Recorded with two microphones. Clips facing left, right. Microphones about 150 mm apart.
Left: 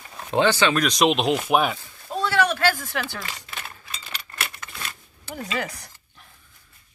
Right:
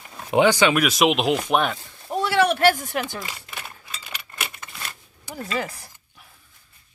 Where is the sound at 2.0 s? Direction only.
20° right (ahead or behind).